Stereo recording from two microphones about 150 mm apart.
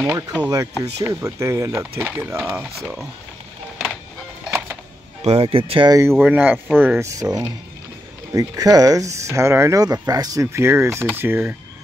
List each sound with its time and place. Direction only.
0.0 s speech: 10° right (ahead or behind)
4.5 s music: 15° right (ahead or behind)
5.2 s speech: 40° right (ahead or behind)
6.1 s speech: 10° right (ahead or behind)